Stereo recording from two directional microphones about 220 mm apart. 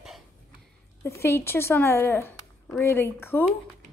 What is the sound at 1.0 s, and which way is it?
A woman's voice, 10° left (ahead or behind).